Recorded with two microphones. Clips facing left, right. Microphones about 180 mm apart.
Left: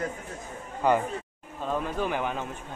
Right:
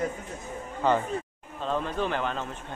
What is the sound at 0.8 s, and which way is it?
A man's voice, 15° left (ahead or behind).